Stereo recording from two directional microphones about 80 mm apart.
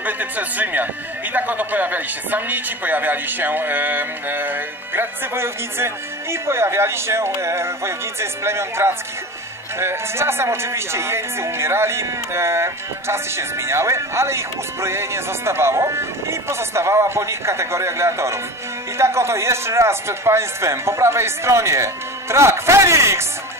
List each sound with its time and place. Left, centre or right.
0.0 s a man's voice: right